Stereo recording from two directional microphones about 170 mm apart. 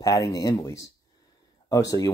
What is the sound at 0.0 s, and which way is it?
Speech, 20° left (ahead or behind).